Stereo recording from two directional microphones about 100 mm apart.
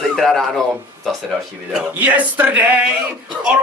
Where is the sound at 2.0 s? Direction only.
15° right (ahead or behind).